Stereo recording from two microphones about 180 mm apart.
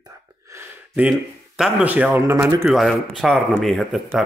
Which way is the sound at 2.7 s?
Centre (ahead or behind).